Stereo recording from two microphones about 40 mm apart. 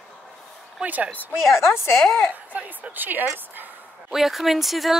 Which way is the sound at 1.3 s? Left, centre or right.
Left.